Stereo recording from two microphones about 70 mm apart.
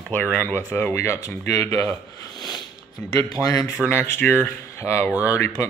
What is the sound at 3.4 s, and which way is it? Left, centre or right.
Speech, left.